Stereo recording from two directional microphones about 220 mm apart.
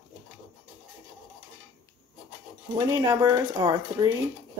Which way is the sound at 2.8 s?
15° right (ahead or behind).